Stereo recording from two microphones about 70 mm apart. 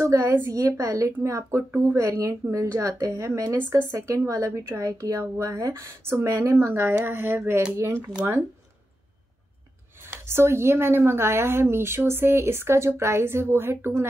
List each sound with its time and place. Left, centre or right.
0.0 s speech: right
10.0 s speech: right